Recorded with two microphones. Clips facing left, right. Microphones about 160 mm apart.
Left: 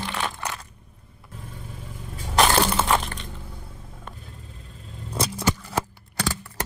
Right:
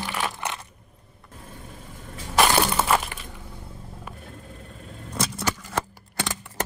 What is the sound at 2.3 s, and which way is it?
Crushing, 5° right (ahead or behind).